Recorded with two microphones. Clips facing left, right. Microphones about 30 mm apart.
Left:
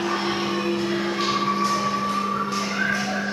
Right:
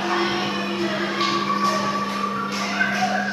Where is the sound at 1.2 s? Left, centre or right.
Centre.